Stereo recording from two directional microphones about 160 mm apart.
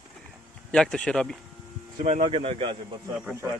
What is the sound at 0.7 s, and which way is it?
Speech, 5° left (ahead or behind).